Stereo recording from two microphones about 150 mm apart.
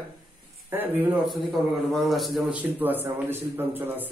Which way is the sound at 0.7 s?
15° right (ahead or behind).